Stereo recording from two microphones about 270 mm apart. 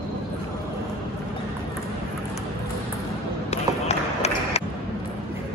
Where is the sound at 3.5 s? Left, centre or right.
Left.